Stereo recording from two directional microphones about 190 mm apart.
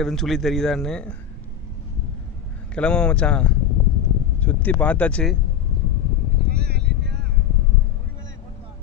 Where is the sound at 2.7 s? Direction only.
5° left (ahead or behind).